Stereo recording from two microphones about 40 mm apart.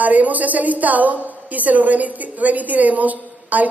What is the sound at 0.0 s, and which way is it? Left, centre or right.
A woman's voice, right.